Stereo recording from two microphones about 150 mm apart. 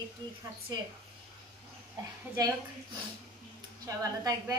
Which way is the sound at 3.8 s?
25° right (ahead or behind).